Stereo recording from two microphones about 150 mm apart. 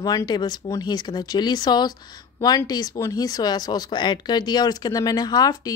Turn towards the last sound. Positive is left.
turn(degrees=25)  # may be behind; listen again after turning